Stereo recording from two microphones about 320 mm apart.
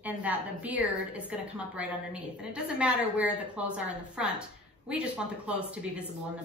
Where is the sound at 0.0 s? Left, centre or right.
Centre.